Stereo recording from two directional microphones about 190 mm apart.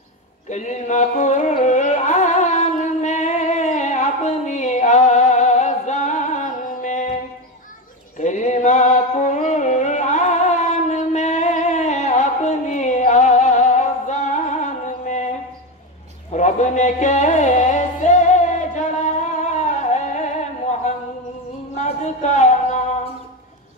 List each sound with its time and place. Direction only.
0.5 s carnatic music: 40° left (ahead or behind)
8.2 s music: 40° left (ahead or behind)
16.3 s music: 40° left (ahead or behind)
21.7 s a sound: 40° left (ahead or behind)